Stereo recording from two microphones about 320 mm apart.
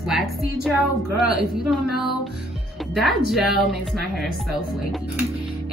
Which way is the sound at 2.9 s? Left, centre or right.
Centre.